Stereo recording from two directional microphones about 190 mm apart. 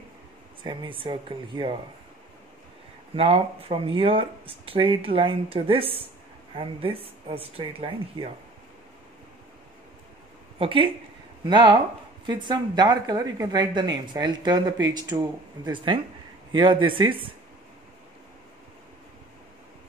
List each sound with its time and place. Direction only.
0.7 s a woman's voice: 25° right (ahead or behind)
3.2 s a woman's voice: 30° right (ahead or behind)
10.6 s a woman's voice: 25° right (ahead or behind)